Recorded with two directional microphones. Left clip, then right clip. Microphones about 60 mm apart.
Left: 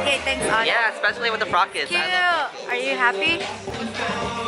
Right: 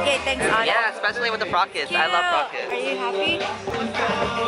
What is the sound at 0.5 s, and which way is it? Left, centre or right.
Speech, centre.